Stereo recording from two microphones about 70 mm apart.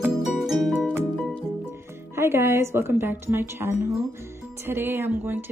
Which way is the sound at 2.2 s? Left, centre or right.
Right.